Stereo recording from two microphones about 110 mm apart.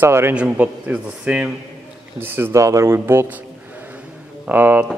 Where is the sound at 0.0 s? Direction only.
20° right (ahead or behind).